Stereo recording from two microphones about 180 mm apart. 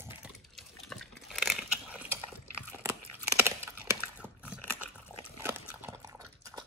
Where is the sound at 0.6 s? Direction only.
Centre (ahead or behind).